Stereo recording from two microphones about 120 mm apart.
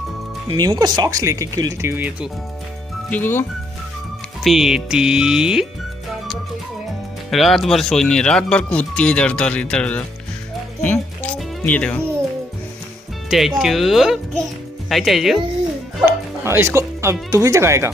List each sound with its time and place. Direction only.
0.5 s speech: 35° right (ahead or behind); by 2.2 s 15° right (ahead or behind)
3.1 s speech: 15° left (ahead or behind)
4.4 s speech: centre (ahead or behind)
7.2 s speech: centre (ahead or behind)
10.8 s music: 15° left (ahead or behind)
11.6 s speech: 15° left (ahead or behind)
13.3 s speech: centre (ahead or behind)
16.1 s speech: 20° right (ahead or behind)